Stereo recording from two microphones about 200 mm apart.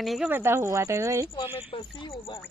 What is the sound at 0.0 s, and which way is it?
Speech, centre (ahead or behind).